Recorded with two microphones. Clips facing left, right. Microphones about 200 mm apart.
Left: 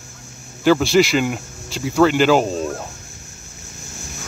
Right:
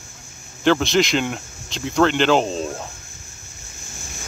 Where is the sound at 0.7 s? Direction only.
5° left (ahead or behind).